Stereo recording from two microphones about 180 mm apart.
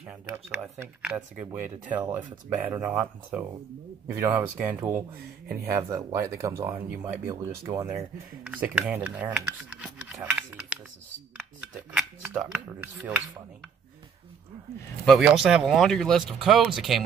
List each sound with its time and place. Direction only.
0.0 s speech: 5° right (ahead or behind)
9.9 s a sound: 5° right (ahead or behind)
11.3 s speech: 5° right (ahead or behind)
15.0 s speech: centre (ahead or behind)